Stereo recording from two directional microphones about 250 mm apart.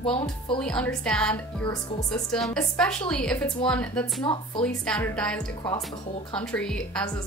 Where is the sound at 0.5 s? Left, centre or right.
Centre.